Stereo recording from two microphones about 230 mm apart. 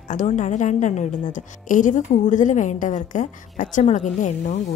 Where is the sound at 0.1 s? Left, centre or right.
Left.